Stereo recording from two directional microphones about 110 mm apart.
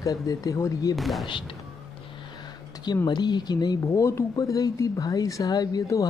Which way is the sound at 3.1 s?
40° left (ahead or behind).